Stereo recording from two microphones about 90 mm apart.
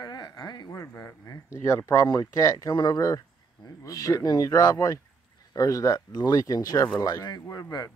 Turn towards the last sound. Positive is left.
turn(degrees=45)  # may be behind; listen again after turning